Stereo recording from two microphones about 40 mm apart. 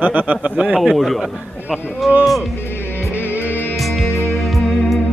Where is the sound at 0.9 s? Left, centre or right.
Centre.